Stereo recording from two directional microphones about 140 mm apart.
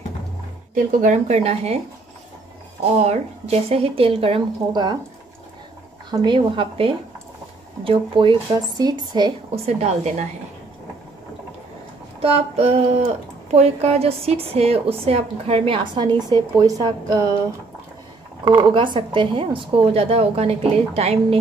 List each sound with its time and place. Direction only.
0.7 s a woman's voice: 65° right (ahead or behind); by 1.8 s 45° right (ahead or behind)
3.0 s a woman's voice: 50° right (ahead or behind)
6.0 s speech: 30° right (ahead or behind)
9.7 s a woman's voice: 50° right (ahead or behind)
12.2 s a woman's voice: 45° right (ahead or behind); by 17.3 s 25° right (ahead or behind)
18.4 s a woman's voice: 35° right (ahead or behind)